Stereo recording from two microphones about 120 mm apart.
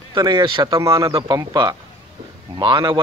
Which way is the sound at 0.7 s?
30° right (ahead or behind).